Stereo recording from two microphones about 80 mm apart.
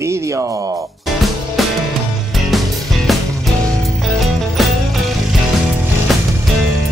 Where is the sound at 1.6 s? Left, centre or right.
Centre.